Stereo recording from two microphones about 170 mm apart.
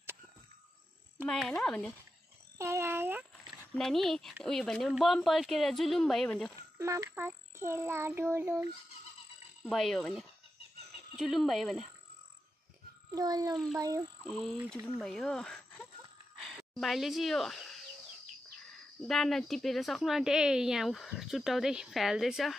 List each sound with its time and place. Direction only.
1.2 s speech: 5° left (ahead or behind)
2.5 s child singing: 15° right (ahead or behind)
3.7 s speech: centre (ahead or behind)
6.8 s child singing: 15° right (ahead or behind)
9.7 s speech: centre (ahead or behind)
13.1 s a child's voice: 20° right (ahead or behind)
14.2 s speech: 5° left (ahead or behind)
18.9 s speech: centre (ahead or behind)